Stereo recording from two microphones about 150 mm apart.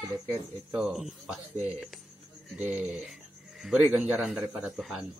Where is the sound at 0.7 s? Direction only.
5° right (ahead or behind).